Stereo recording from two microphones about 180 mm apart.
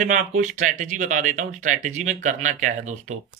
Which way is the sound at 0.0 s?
45° right (ahead or behind).